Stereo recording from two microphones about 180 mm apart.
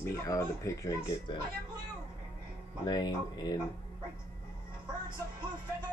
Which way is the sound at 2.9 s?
25° left (ahead or behind).